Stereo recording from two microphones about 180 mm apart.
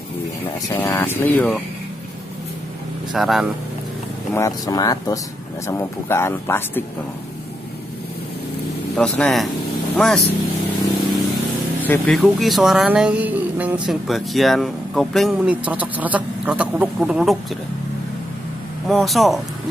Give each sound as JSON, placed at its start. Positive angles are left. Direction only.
{"t": 0.7, "sound": "speech", "side_deg": 15}
{"t": 3.1, "sound": "speech", "side_deg": 0}
{"t": 4.3, "sound": "speech", "side_deg": 20}
{"t": 8.9, "sound": "speech", "side_deg": 5}
{"t": 11.8, "sound": "speech", "side_deg": 5}
{"t": 18.9, "sound": "speech", "side_deg": 0}